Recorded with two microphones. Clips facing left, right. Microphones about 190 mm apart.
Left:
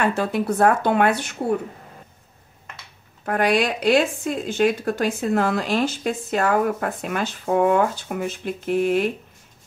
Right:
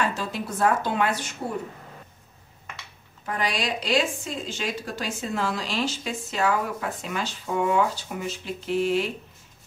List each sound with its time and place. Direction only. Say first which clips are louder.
0.0 s a woman's voice: left 6 dB; 60° left (ahead or behind)
3.3 s a woman's voice: left 8 dB; 55° left (ahead or behind)